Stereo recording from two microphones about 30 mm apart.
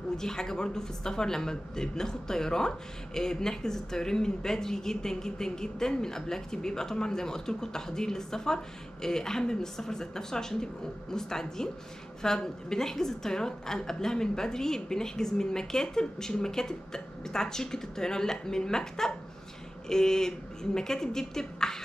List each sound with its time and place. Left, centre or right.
0.2 s speech: centre